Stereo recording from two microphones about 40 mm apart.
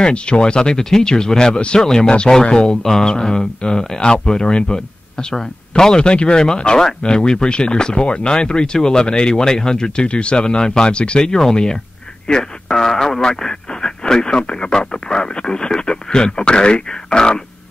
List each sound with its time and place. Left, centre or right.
0.0 s speech: left